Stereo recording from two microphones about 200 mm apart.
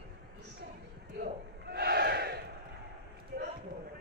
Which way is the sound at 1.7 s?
50° right (ahead or behind).